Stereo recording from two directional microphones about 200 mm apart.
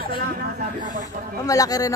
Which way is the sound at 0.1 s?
45° right (ahead or behind).